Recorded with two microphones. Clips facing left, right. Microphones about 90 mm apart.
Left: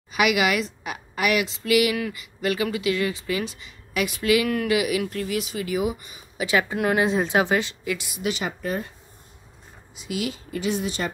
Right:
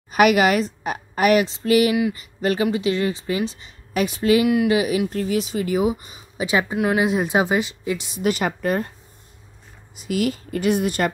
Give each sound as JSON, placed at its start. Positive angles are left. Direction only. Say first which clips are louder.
{"t": 0.1, "sound": "speech", "louder": "right 6 dB", "side_deg": -45}
{"t": 6.7, "sound": "a woman's voice", "louder": "right 2 dB", "side_deg": -5}
{"t": 8.2, "sound": "speech", "louder": "right 9 dB", "side_deg": -45}
{"t": 9.9, "sound": "speech", "louder": "right 6 dB", "side_deg": -50}